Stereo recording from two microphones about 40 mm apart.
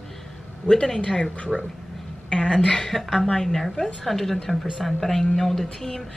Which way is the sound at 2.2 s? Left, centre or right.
Left.